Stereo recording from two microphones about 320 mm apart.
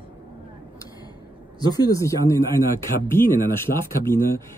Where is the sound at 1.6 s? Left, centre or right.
Centre.